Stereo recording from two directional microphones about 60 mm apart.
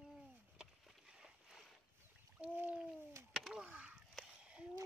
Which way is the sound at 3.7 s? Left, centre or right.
Centre.